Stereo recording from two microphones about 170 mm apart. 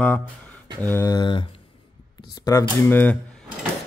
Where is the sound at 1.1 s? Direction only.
30° left (ahead or behind).